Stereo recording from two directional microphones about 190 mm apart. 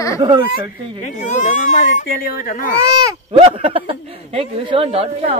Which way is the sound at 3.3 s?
30° right (ahead or behind).